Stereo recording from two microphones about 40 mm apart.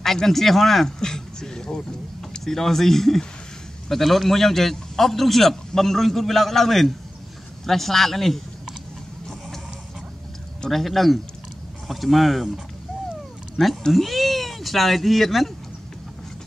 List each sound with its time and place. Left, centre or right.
0.0 s a man's voice: centre
10.7 s a man's voice: centre
13.6 s speech: centre
13.9 s speech: centre